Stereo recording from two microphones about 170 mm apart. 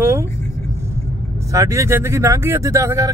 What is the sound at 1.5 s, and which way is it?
Speech, 20° right (ahead or behind).